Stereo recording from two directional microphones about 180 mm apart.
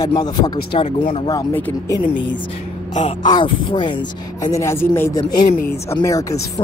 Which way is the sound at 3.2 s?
25° left (ahead or behind).